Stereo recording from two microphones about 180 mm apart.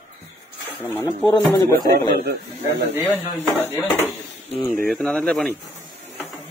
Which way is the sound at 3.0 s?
10° left (ahead or behind).